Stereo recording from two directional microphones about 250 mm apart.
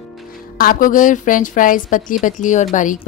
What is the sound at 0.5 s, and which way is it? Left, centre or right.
A woman's voice, left.